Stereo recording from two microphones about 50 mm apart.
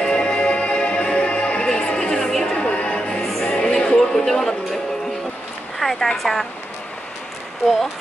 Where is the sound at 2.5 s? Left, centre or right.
Left.